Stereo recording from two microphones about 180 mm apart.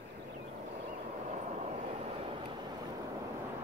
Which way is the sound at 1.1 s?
40° right (ahead or behind).